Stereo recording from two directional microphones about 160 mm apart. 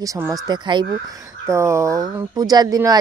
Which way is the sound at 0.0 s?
20° right (ahead or behind).